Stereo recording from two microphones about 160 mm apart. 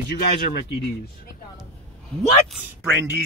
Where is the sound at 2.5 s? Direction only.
10° right (ahead or behind).